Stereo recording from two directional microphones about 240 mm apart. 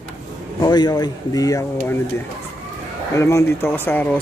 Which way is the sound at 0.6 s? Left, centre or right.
Centre.